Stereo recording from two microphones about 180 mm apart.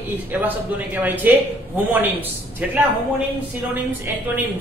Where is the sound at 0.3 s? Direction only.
10° right (ahead or behind).